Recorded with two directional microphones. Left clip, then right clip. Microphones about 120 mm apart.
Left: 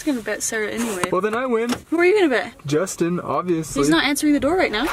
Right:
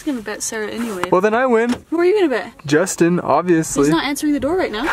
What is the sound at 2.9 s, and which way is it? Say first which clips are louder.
Speech: right 7 dB; 65° right (ahead or behind).